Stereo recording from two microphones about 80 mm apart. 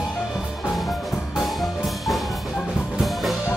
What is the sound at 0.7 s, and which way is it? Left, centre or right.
Music, centre.